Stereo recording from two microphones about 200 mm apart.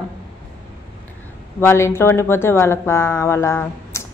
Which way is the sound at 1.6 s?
15° left (ahead or behind).